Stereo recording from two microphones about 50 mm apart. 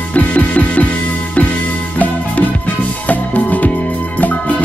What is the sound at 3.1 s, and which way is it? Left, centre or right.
Music, left.